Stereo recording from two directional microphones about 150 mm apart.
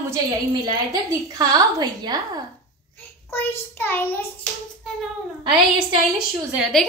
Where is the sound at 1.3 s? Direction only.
25° right (ahead or behind).